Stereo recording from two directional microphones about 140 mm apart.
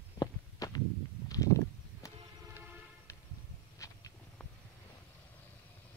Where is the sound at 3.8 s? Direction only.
20° left (ahead or behind).